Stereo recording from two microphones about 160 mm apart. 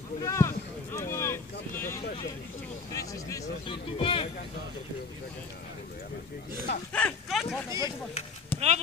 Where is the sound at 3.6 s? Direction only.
30° left (ahead or behind).